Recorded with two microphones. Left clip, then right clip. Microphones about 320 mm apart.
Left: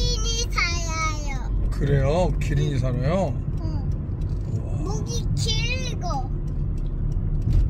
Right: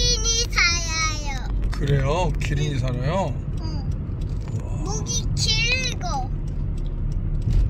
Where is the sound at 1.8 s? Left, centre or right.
Left.